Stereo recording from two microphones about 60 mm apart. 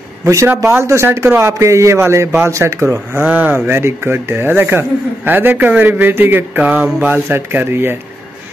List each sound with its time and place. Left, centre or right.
0.2 s a man's voice: right
3.3 s speech: right
3.6 s speech: right